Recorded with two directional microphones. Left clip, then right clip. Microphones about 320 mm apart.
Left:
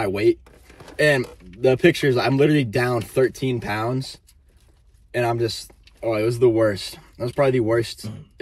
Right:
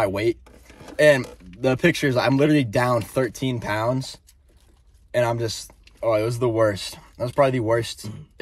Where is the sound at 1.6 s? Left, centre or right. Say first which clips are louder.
Left 3 dB; centre.